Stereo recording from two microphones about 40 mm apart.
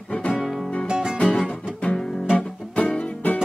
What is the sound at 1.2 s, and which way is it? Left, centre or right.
Music, left.